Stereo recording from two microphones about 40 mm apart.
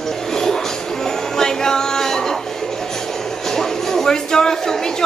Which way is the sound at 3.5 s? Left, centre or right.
Centre.